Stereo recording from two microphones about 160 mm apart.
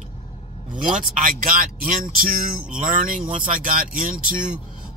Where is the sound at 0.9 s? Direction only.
60° right (ahead or behind).